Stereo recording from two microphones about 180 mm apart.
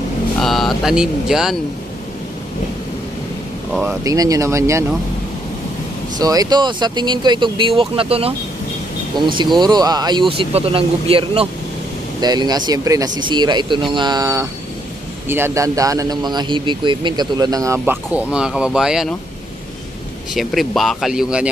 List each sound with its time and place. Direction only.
0.4 s speech: centre (ahead or behind)
3.8 s a man's voice: 20° right (ahead or behind)
6.1 s speech: 20° right (ahead or behind)
9.4 s a man's voice: 25° right (ahead or behind); by 19.1 s 5° right (ahead or behind)
20.3 s speech: centre (ahead or behind)